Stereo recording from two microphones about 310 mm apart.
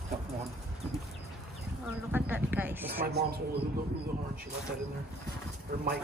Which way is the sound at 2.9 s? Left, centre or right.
Right.